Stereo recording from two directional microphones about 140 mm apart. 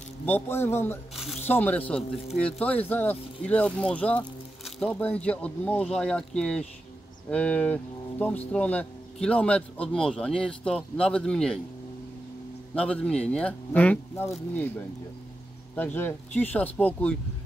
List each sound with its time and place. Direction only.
0.2 s speech: 15° left (ahead or behind)
1.1 s zipper: centre (ahead or behind)
1.5 s speech: 10° left (ahead or behind)
12.7 s speech: 10° left (ahead or behind)